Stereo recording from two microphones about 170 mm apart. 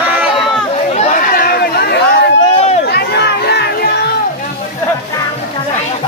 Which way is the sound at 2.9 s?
80° left.